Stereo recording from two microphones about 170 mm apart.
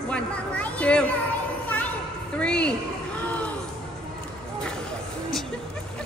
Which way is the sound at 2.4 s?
5° left (ahead or behind).